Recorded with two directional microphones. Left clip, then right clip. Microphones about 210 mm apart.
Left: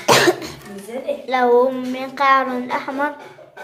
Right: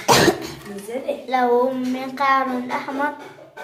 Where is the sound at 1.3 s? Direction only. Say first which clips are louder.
Left 3 dB; 15° left (ahead or behind).